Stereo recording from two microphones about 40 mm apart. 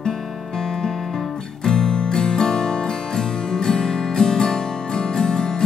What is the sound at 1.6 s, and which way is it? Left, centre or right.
Music, centre.